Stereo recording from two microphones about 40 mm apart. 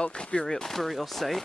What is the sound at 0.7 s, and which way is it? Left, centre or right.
Speech, centre.